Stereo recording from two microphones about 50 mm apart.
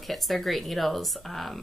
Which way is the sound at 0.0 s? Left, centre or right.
Centre.